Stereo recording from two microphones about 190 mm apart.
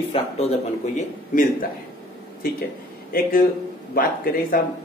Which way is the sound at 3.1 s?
50° left (ahead or behind).